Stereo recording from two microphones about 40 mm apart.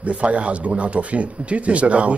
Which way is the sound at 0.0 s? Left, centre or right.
Right.